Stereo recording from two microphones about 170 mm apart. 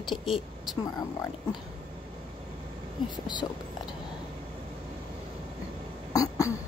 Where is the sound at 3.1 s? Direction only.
25° left (ahead or behind).